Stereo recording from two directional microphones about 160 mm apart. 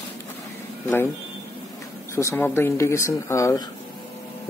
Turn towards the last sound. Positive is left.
turn(degrees=20)  # may be behind; listen again after turning